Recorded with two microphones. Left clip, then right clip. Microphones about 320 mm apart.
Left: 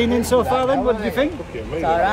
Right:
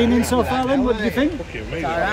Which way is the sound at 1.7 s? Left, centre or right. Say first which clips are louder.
Left 4 dB; centre.